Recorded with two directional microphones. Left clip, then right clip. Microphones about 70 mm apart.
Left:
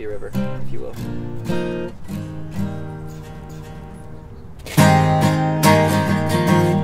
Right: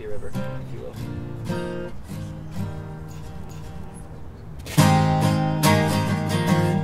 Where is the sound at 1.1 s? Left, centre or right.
Left.